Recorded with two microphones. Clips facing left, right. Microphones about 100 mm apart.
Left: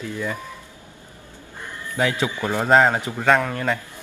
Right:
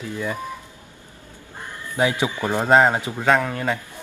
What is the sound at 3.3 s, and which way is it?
Speech, 5° right (ahead or behind).